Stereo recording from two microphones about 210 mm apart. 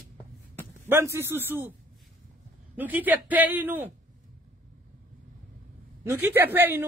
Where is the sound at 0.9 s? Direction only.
10° right (ahead or behind).